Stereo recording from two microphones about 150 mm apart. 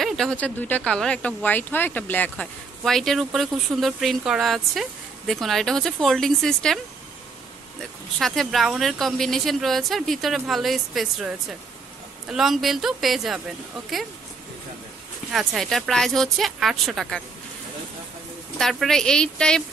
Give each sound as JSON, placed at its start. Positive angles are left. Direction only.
{"t": 0.0, "sound": "speech", "side_deg": 0}
{"t": 8.2, "sound": "speech", "side_deg": 0}
{"t": 15.3, "sound": "speech", "side_deg": 0}
{"t": 18.6, "sound": "speech", "side_deg": 0}